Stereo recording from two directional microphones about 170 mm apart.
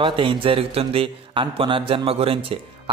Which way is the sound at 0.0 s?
30° right (ahead or behind).